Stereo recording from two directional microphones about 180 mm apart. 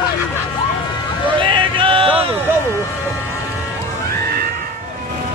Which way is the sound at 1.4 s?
30° right (ahead or behind).